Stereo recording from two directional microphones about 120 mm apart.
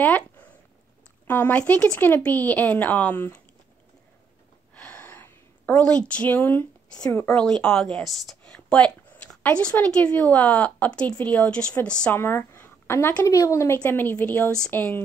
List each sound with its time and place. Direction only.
1.2 s speech: 15° left (ahead or behind)
4.7 s a sound: 10° left (ahead or behind)
7.2 s a woman's voice: 5° left (ahead or behind)